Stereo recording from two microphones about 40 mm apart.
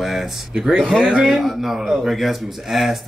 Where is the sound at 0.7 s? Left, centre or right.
Centre.